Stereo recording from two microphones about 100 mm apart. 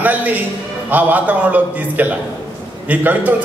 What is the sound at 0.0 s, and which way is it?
A man's voice, 15° right (ahead or behind).